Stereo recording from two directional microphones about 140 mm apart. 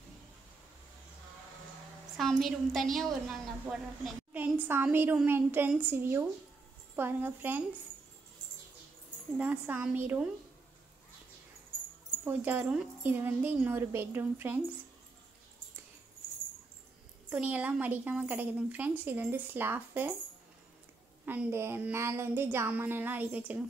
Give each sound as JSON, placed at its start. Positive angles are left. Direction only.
{"t": 2.1, "sound": "a woman's voice", "side_deg": 0}
{"t": 9.4, "sound": "a woman's voice", "side_deg": -10}
{"t": 12.3, "sound": "a woman's voice", "side_deg": -10}
{"t": 17.3, "sound": "a woman's voice", "side_deg": -10}
{"t": 21.3, "sound": "a woman's voice", "side_deg": -15}